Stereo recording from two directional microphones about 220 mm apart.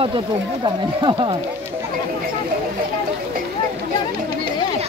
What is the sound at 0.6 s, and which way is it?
Speech, 20° right (ahead or behind).